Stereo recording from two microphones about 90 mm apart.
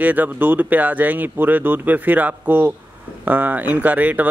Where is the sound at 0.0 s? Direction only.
20° right (ahead or behind).